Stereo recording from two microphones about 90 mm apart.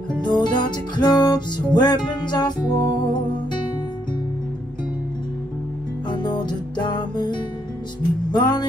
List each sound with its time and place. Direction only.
0.2 s music: 55° left (ahead or behind)
6.0 s music: 55° left (ahead or behind)